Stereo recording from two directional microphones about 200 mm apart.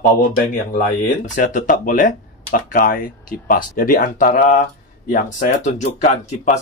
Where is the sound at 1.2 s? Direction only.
40° left (ahead or behind).